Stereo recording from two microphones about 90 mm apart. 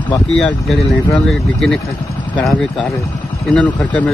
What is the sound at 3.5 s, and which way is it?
Speech, 15° left (ahead or behind).